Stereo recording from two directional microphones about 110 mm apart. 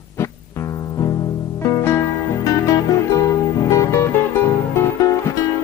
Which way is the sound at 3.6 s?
25° left (ahead or behind).